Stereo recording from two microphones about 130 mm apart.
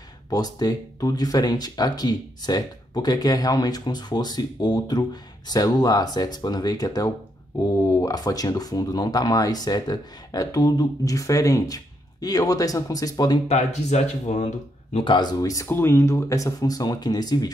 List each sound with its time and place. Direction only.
0.3 s speech: 30° left (ahead or behind)
13.5 s speech: 55° left (ahead or behind)
15.0 s speech: 35° left (ahead or behind)